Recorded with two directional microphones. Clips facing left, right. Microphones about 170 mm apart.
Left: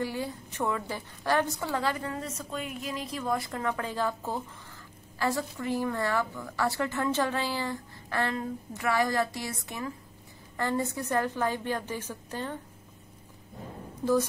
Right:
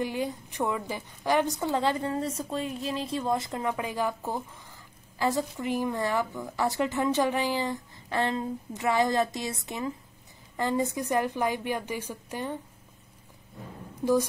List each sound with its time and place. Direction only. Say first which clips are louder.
0.0 s a woman's voice: right 2 dB; 20° right (ahead or behind)